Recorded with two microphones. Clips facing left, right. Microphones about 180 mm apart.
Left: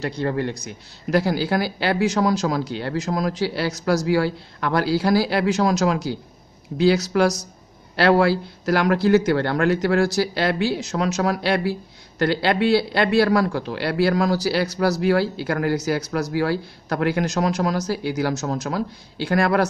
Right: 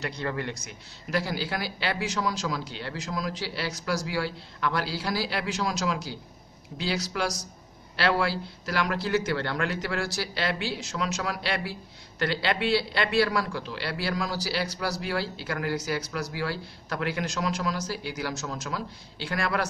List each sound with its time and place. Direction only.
0.0 s speech: 35° left (ahead or behind)
1.1 s a man's voice: 45° left (ahead or behind)